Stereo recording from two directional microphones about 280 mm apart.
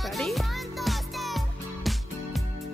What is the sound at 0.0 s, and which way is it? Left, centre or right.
Music, centre.